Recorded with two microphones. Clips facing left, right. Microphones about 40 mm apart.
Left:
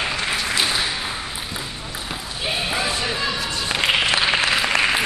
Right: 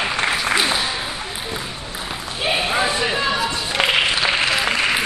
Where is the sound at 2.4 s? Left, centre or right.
Centre.